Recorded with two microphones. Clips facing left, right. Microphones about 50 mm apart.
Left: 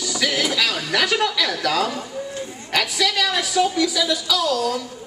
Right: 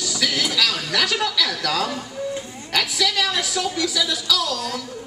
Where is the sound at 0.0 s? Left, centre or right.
Centre.